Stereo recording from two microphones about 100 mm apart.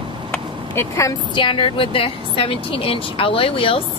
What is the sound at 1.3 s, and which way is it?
A woman's voice, 55° left (ahead or behind).